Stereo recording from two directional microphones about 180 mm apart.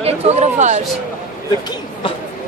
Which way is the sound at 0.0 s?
35° right (ahead or behind).